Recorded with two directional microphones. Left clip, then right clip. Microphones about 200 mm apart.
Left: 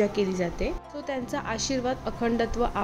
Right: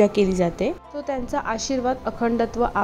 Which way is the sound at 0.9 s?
Centre (ahead or behind).